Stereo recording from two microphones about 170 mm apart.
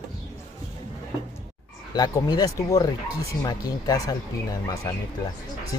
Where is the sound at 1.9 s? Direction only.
25° left (ahead or behind).